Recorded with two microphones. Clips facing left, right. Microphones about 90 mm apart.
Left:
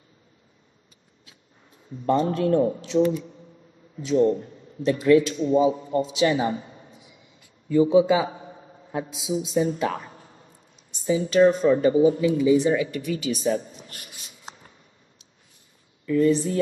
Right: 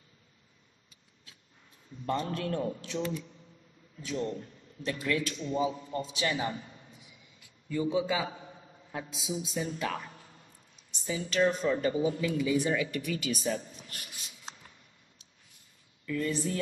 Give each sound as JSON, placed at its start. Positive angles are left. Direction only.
{"t": 2.0, "sound": "a man's voice", "side_deg": 30}
{"t": 7.7, "sound": "speech", "side_deg": 25}
{"t": 13.5, "sound": "a sound", "side_deg": 30}
{"t": 16.1, "sound": "speech", "side_deg": 25}